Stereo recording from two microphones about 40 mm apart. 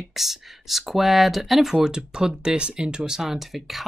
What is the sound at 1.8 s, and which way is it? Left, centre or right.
Speech, centre.